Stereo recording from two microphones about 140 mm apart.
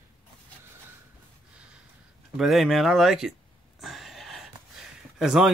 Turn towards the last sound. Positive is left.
turn(degrees=-5)  # may be behind; listen again after turning